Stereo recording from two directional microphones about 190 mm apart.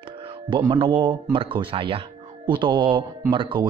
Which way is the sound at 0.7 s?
25° right (ahead or behind).